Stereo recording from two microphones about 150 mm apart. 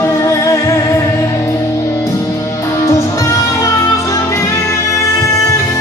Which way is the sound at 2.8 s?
20° left (ahead or behind).